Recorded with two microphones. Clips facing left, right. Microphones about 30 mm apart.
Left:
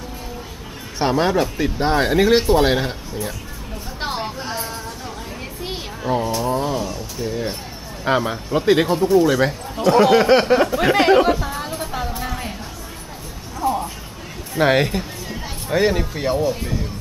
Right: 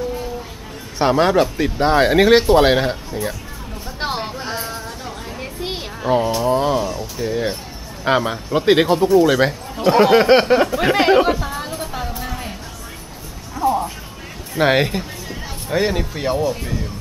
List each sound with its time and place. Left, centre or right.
0.9 s speech: centre
4.0 s a sound: centre
5.6 s a sound: centre
8.0 s speech: centre
8.6 s speech: centre
10.4 s music: centre
13.6 s music: centre
14.5 s speech: centre